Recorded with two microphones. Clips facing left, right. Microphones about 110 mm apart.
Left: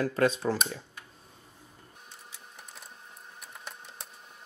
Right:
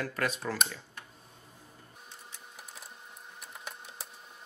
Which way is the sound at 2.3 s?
Centre (ahead or behind).